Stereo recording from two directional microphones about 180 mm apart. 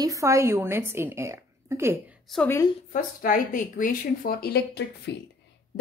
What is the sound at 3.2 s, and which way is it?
Speech, 50° left (ahead or behind).